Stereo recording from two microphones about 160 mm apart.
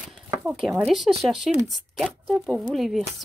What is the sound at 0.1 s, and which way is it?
Speech, 5° right (ahead or behind).